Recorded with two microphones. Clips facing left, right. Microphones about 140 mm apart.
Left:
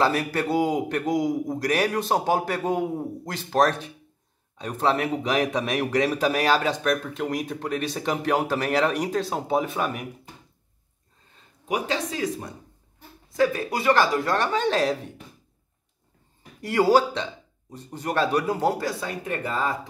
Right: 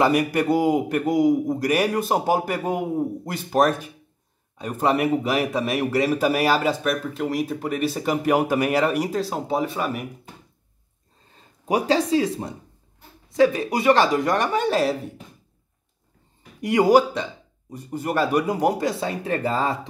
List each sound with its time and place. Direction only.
0.0 s a man's voice: 15° right (ahead or behind)
11.3 s speech: 35° right (ahead or behind); by 15.0 s 5° right (ahead or behind)
16.6 s a man's voice: 15° right (ahead or behind)